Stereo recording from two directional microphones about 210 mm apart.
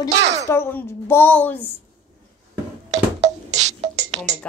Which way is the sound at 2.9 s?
35° right (ahead or behind).